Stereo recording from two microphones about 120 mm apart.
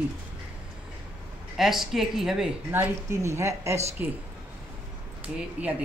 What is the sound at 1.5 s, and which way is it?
A woman's voice, centre (ahead or behind).